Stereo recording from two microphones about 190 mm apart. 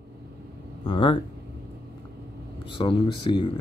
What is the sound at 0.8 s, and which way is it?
Speech, 25° left (ahead or behind).